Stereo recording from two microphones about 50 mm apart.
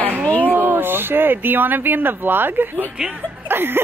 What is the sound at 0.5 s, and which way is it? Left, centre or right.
A woman's voice, right.